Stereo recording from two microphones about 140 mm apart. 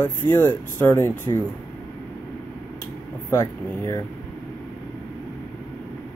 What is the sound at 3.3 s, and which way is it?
Speech, 20° left (ahead or behind).